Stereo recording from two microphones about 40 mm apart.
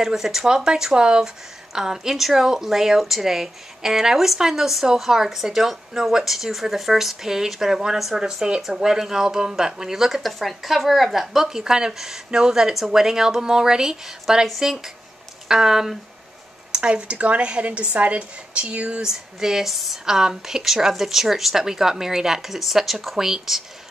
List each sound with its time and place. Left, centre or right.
0.0 s speech: centre
16.7 s speech: right
19.0 s speech: centre